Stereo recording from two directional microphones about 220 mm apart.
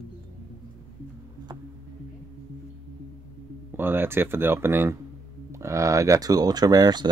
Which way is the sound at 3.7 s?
10° right (ahead or behind).